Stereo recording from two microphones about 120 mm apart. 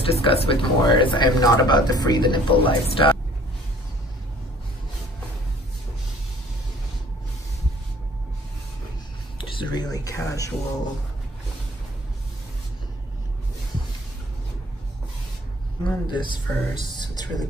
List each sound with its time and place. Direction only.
0.0 s speech: 50° left (ahead or behind)
9.4 s speech: 45° left (ahead or behind); by 10.5 s 25° left (ahead or behind)
15.8 s speech: 40° left (ahead or behind)